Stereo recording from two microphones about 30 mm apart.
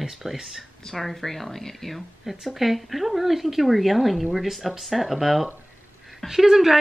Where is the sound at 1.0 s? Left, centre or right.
Centre.